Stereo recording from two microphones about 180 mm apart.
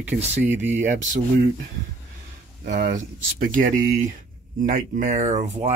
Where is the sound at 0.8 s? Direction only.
45° right (ahead or behind).